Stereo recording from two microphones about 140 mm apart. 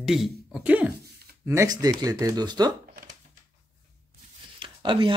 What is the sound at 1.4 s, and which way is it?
Speech, 20° right (ahead or behind).